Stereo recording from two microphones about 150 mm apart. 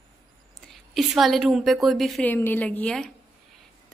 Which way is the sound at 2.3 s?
10° left (ahead or behind).